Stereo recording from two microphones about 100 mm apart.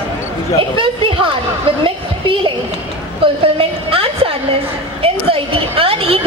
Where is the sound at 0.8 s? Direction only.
65° right (ahead or behind).